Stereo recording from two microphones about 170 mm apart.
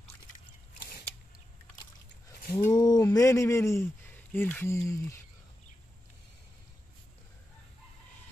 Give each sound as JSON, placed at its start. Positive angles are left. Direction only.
{"t": 2.5, "sound": "speech", "side_deg": 20}